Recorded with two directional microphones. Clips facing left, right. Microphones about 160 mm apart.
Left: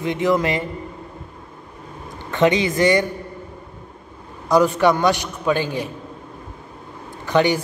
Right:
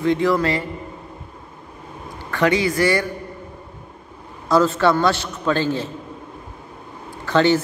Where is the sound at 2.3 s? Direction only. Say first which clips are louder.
Left 1 dB; 20° left (ahead or behind).